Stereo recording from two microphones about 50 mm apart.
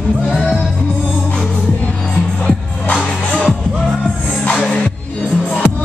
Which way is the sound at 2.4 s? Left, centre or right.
Left.